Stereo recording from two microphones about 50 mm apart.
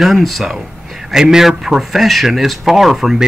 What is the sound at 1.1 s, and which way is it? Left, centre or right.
Speech, centre.